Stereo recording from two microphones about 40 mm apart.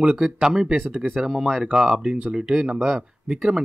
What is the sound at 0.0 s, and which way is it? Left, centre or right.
Speech, centre.